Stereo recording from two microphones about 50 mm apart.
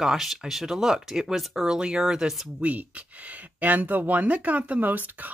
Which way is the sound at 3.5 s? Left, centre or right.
Right.